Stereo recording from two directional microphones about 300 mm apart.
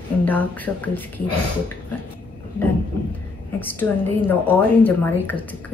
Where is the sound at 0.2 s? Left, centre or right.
Centre.